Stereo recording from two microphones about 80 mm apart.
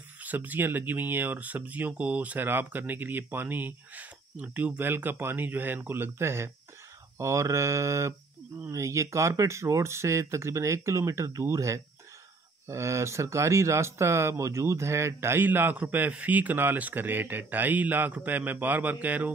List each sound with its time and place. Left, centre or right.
0.2 s speech: right